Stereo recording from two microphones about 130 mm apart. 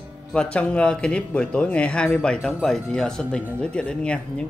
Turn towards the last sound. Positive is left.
turn(degrees=10)  # may be behind; listen again after turning